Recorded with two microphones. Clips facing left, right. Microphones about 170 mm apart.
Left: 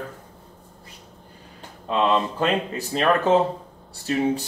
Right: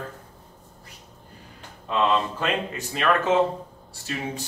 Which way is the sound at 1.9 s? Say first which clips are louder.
Left 2 dB; 30° left (ahead or behind).